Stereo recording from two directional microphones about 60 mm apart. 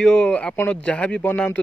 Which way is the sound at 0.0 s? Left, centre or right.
Centre.